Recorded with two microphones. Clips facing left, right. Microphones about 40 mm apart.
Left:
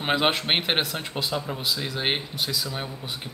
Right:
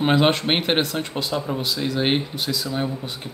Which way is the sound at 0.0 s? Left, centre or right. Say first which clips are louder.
Right 5 dB; centre.